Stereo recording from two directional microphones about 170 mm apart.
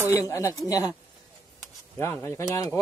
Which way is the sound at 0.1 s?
20° left (ahead or behind).